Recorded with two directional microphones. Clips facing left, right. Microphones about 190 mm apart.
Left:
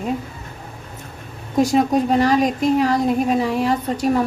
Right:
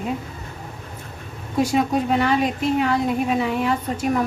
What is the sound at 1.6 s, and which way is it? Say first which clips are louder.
A woman's voice: left 3 dB; 40° left (ahead or behind).